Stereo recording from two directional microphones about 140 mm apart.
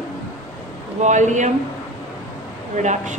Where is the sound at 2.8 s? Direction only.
60° right (ahead or behind).